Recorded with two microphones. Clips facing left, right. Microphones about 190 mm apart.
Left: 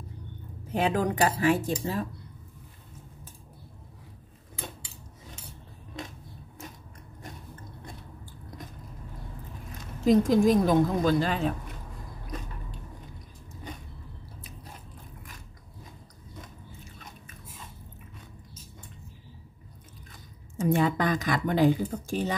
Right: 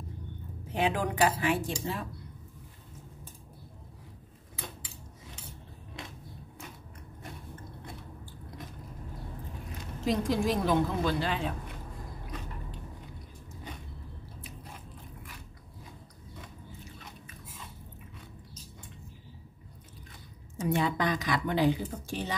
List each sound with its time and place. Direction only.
0.7 s speech: 40° left (ahead or behind)
10.0 s speech: 45° left (ahead or behind)
20.5 s speech: 50° left (ahead or behind)